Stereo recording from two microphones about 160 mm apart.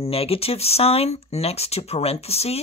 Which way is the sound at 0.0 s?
40° left (ahead or behind).